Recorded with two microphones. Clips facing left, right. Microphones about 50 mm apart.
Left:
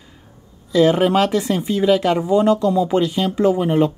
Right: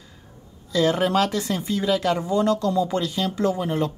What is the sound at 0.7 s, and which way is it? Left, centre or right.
Speech, centre.